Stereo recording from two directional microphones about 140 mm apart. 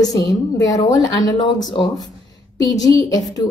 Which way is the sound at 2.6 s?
25° left (ahead or behind).